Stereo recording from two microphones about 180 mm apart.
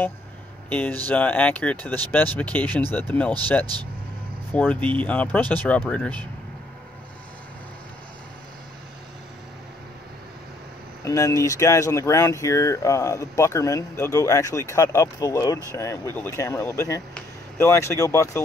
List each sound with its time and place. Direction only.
0.7 s speech: 10° left (ahead or behind)
4.5 s speech: 10° left (ahead or behind)
11.1 s speech: 15° left (ahead or behind)